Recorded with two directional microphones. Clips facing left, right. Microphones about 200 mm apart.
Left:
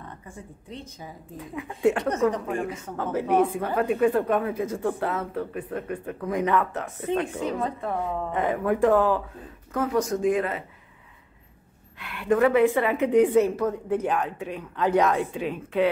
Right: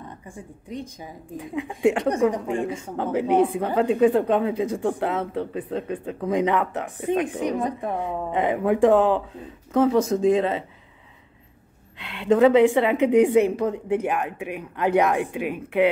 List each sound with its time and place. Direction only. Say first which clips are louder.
0.3 s speech: right 6 dB; 15° right (ahead or behind)
2.4 s a woman's voice: right 3 dB; 25° right (ahead or behind)
3.1 s a woman's voice: right 2 dB; 15° right (ahead or behind)
12.0 s a woman's voice: right 4 dB; 20° right (ahead or behind)